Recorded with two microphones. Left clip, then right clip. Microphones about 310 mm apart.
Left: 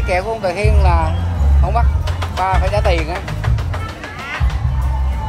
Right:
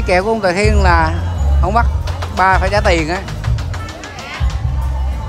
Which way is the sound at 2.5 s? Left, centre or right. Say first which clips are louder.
Right 4 dB; right.